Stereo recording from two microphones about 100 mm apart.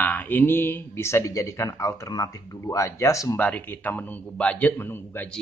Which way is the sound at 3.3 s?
15° left (ahead or behind).